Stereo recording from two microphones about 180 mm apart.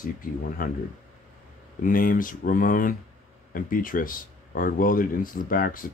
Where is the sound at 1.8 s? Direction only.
50° left (ahead or behind).